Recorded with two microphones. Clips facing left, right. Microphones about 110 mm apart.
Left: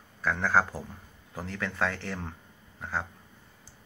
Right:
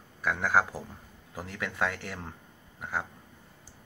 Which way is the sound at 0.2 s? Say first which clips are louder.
Left 1 dB; 10° right (ahead or behind).